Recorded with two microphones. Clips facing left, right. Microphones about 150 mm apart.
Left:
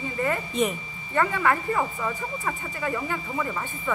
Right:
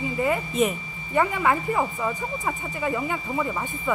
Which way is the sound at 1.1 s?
15° right (ahead or behind).